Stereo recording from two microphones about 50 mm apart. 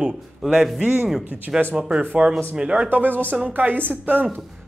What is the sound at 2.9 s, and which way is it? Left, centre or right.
A woman's voice, right.